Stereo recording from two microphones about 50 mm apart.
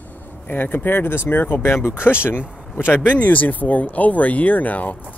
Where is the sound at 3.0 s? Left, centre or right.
Left.